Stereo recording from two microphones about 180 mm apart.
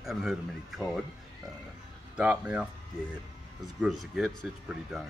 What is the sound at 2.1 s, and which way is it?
Speech, 5° right (ahead or behind).